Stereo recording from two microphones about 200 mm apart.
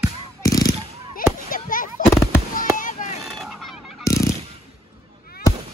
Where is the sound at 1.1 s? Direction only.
45° left (ahead or behind).